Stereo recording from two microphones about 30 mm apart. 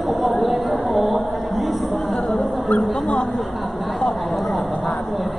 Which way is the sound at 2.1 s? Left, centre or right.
Left.